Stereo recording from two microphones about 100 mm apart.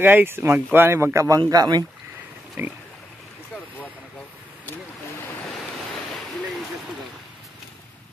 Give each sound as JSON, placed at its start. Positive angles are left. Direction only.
{"t": 0.0, "sound": "speech", "side_deg": -20}
{"t": 1.5, "sound": "speech", "side_deg": -45}